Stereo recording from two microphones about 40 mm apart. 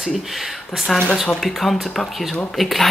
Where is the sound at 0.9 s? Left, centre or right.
Centre.